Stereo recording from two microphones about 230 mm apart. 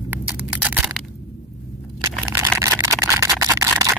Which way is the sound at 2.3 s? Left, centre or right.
Centre.